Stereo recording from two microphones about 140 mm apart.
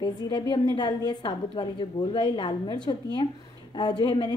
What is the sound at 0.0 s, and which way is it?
A woman's voice, 35° left (ahead or behind).